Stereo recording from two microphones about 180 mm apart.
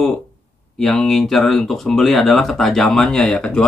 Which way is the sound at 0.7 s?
Centre (ahead or behind).